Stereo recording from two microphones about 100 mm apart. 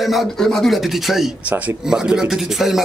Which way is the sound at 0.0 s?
Centre (ahead or behind).